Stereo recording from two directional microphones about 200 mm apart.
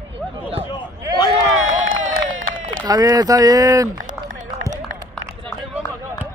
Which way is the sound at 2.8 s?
20° right (ahead or behind).